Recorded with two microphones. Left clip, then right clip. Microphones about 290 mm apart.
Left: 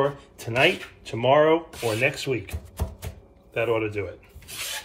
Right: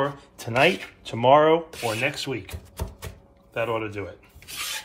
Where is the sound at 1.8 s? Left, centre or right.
Centre.